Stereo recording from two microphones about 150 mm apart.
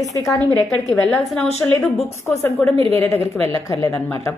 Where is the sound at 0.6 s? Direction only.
5° left (ahead or behind).